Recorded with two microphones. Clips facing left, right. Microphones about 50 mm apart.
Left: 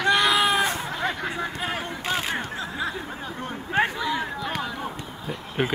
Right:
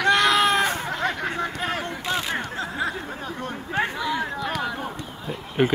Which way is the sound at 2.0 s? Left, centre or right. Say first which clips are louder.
Left 1 dB; left.